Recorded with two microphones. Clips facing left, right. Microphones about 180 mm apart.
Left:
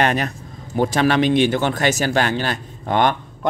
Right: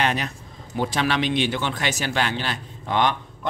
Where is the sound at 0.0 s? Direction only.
50° left (ahead or behind).